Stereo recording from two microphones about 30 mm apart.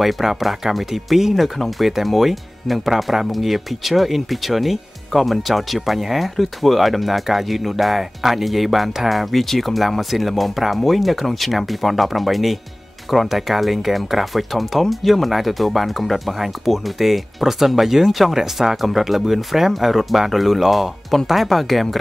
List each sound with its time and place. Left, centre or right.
0.0 s speech: centre
18.3 s speech: centre
18.8 s speech: centre